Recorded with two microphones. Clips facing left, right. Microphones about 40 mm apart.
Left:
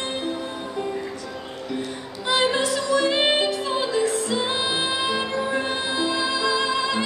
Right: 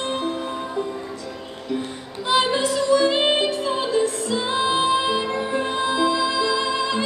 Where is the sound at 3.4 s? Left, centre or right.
Right.